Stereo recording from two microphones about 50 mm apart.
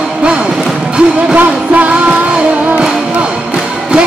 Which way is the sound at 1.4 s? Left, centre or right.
Right.